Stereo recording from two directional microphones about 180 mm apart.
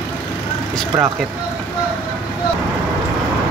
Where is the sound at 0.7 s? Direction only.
Centre (ahead or behind).